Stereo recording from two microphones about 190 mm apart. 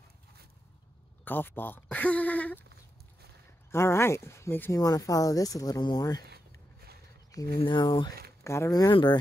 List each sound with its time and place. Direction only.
1.2 s speech: 10° left (ahead or behind)
3.7 s speech: 15° left (ahead or behind)
7.6 s speech: 25° left (ahead or behind)